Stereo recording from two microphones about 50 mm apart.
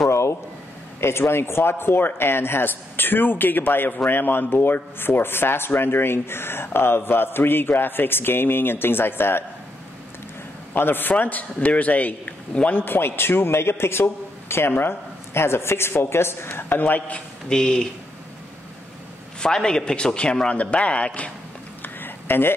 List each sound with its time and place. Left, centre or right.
0.1 s a sound: left
1.0 s speech: left
10.7 s a man's voice: left
12.7 s speech: left
17.5 s speech: centre
19.4 s a man's voice: centre
21.8 s a sound: left